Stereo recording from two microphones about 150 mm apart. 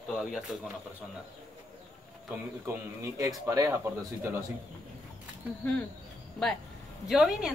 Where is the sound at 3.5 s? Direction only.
20° right (ahead or behind).